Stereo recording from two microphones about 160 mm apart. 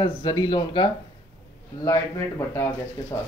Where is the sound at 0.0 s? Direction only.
30° left (ahead or behind).